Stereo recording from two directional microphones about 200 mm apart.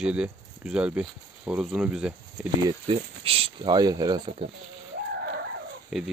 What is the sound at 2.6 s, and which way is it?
Speech, 25° right (ahead or behind).